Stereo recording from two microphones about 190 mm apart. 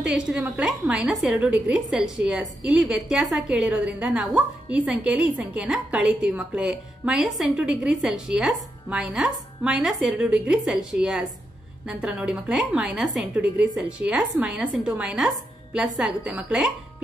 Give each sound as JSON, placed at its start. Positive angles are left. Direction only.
{"t": 0.0, "sound": "a woman's voice", "side_deg": -5}